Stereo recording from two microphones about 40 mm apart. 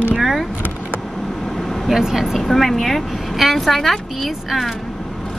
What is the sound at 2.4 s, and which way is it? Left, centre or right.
Speech, centre.